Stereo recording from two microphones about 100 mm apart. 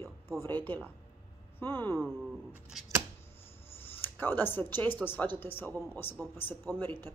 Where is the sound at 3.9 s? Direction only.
20° left (ahead or behind).